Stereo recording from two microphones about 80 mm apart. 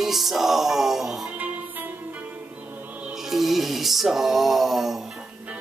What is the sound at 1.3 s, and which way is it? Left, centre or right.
Music, right.